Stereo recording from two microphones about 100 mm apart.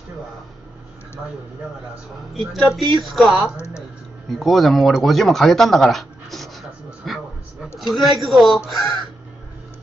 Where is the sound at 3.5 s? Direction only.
25° left (ahead or behind).